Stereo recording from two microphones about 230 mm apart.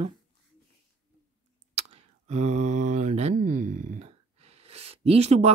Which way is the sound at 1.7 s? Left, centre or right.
Right.